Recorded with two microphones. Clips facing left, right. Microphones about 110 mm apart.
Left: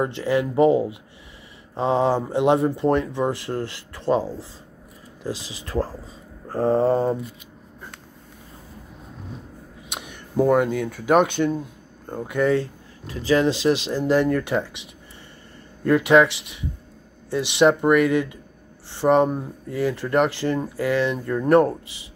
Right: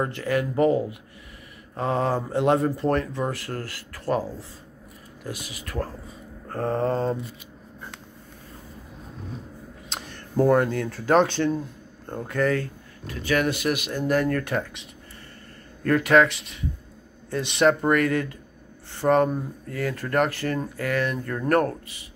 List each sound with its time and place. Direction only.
0.0 s speech: 20° left (ahead or behind)
6.5 s speech: 15° left (ahead or behind)
9.8 s a sound: 15° left (ahead or behind)
10.3 s speech: 5° left (ahead or behind)
15.8 s speech: 15° left (ahead or behind)
17.6 s speech: 15° left (ahead or behind)